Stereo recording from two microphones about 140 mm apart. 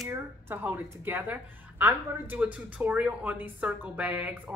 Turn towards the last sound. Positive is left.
turn(degrees=-10)  # may be behind; listen again after turning